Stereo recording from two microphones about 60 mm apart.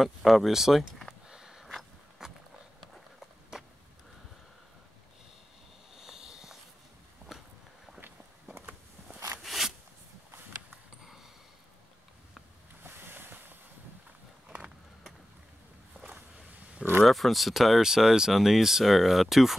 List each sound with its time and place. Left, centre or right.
0.0 s speech: centre
1.2 s a sound: centre
3.5 s vehicle: centre
5.9 s a sound: centre
9.4 s zipper: centre
12.8 s boat: right
17.0 s speech: centre